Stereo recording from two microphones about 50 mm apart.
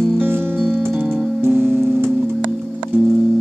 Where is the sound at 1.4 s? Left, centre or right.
Right.